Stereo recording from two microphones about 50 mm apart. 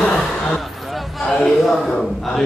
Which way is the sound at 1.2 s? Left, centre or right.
Centre.